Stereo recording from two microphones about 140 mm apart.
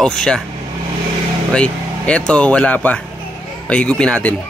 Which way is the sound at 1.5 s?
10° left (ahead or behind).